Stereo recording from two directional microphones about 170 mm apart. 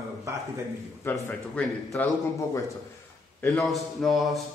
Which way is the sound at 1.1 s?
15° left (ahead or behind).